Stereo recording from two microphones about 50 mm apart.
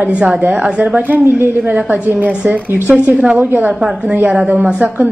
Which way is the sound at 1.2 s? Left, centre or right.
Right.